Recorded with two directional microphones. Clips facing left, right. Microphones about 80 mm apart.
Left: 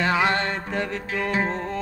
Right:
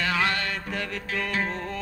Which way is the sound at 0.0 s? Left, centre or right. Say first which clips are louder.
Left 4 dB; left.